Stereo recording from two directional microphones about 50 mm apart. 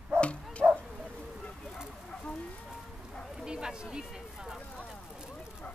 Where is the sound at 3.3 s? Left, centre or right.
Centre.